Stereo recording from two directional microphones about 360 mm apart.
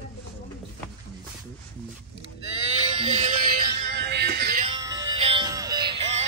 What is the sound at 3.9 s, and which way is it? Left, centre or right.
Music, right.